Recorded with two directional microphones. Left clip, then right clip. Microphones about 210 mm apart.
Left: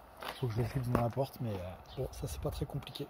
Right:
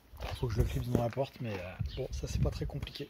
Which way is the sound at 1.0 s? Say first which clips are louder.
Right 1 dB; 5° left (ahead or behind).